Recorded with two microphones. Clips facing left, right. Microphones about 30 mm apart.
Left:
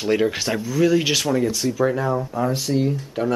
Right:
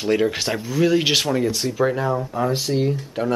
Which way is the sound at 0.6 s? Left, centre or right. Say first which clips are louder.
Left 1 dB; centre.